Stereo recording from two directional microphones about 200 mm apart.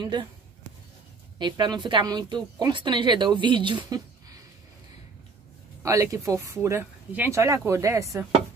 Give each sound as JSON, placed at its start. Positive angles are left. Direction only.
{"t": 0.0, "sound": "speech", "side_deg": -25}
{"t": 1.4, "sound": "speech", "side_deg": -20}
{"t": 5.8, "sound": "speech", "side_deg": -15}